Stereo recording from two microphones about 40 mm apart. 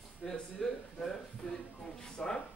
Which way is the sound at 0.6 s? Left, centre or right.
Centre.